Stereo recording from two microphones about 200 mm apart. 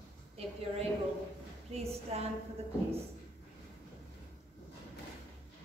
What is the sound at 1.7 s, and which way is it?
Speech, 30° right (ahead or behind).